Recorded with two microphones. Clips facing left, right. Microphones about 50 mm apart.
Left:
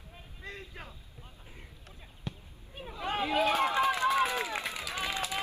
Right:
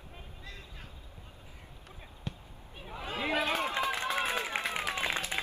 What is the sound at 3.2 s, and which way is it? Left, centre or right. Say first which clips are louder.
Speech: left 2 dB; right.